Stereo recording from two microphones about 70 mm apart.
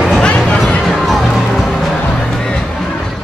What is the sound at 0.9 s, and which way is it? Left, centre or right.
Music, centre.